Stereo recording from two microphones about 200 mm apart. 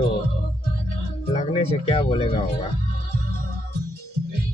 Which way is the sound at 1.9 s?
30° left (ahead or behind).